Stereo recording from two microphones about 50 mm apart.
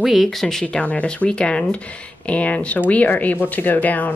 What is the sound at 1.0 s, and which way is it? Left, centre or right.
Speech, left.